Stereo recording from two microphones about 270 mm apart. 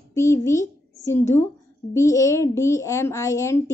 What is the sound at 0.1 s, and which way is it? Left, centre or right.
A woman's voice, centre.